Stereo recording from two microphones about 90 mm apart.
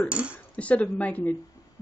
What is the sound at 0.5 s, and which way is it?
Speech, 15° left (ahead or behind).